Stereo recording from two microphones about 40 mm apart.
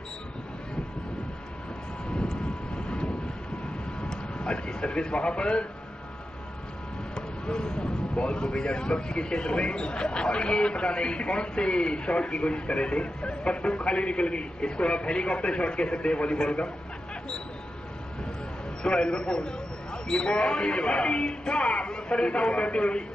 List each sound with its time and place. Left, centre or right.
2.0 s vehicle: left
4.0 s a sound: centre
7.2 s speech: centre
18.8 s speech: left